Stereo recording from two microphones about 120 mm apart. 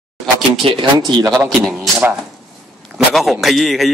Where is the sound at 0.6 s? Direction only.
55° right (ahead or behind).